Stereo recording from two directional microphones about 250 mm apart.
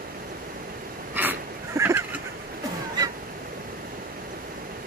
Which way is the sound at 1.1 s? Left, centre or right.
Centre.